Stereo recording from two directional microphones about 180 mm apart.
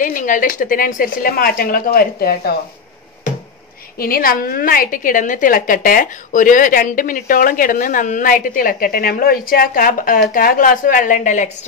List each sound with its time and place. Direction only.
0.0 s a woman's voice: 50° left (ahead or behind)
4.0 s a woman's voice: 55° left (ahead or behind)